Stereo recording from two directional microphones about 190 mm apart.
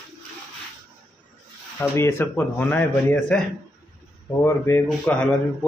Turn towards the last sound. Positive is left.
turn(degrees=5)  # may be behind; listen again after turning